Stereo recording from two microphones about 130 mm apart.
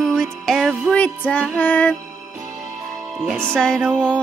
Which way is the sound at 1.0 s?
10° left (ahead or behind).